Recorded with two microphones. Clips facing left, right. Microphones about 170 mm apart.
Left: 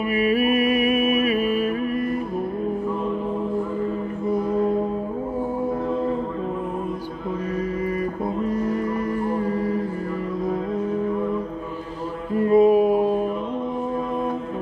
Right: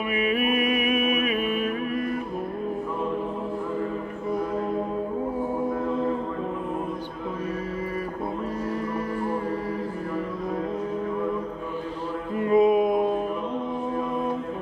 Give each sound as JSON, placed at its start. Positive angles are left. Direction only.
{"t": 0.1, "sound": "music", "side_deg": 40}
{"t": 12.4, "sound": "music", "side_deg": 35}
{"t": 12.9, "sound": "music", "side_deg": 5}